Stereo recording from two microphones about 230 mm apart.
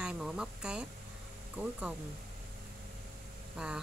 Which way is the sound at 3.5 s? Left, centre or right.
Centre.